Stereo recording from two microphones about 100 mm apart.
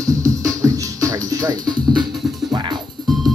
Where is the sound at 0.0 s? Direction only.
35° right (ahead or behind).